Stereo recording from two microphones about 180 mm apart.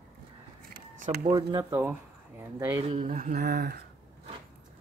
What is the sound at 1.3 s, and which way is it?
Speech, 20° right (ahead or behind).